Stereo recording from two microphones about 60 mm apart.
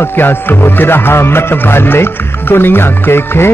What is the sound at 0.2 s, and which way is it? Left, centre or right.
Music, left.